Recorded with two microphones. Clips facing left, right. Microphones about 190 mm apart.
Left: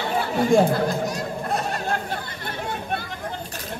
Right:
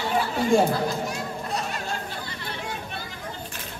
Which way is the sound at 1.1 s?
50° left (ahead or behind).